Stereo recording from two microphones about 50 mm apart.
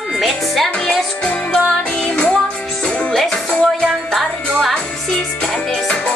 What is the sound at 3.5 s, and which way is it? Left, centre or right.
Music, centre.